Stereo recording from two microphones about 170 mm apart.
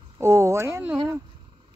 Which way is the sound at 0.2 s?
15° right (ahead or behind).